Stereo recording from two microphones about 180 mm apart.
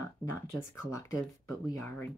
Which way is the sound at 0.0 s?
15° left (ahead or behind).